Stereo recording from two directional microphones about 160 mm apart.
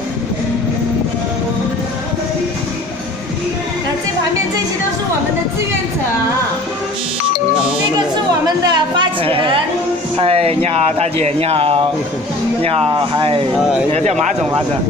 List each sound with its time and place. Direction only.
8.5 s chatter: 30° right (ahead or behind)
10.1 s speech: 40° right (ahead or behind)